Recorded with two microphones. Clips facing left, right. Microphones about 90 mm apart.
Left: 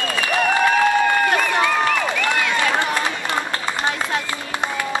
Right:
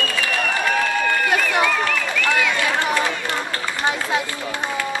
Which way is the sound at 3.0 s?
20° left (ahead or behind).